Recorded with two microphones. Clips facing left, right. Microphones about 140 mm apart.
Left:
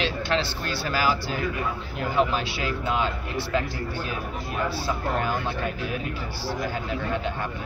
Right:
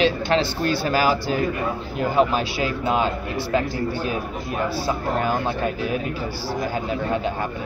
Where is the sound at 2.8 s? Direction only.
45° right (ahead or behind).